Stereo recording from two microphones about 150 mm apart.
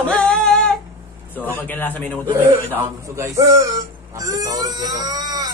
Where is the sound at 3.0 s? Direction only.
20° right (ahead or behind).